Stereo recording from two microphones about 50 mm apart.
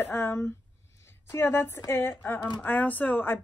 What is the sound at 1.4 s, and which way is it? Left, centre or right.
Speech, left.